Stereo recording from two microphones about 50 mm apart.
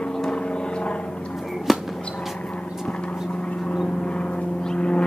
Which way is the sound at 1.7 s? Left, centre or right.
Centre.